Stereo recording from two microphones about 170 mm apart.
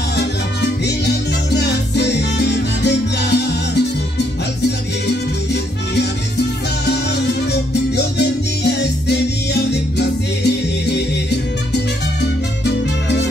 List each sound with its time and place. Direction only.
0.1 s music: 80° left
12.6 s salsa music: 85° left